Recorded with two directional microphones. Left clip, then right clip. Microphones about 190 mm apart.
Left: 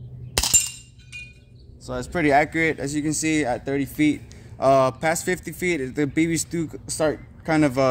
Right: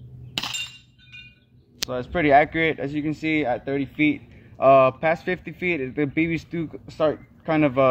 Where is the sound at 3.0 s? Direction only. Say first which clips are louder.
Left 1 dB; 15° right (ahead or behind).